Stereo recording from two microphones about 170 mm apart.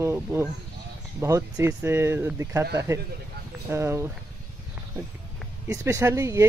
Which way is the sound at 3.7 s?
15° right (ahead or behind).